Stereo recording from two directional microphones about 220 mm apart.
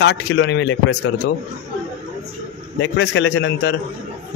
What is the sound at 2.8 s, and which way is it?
Speech, 55° left (ahead or behind).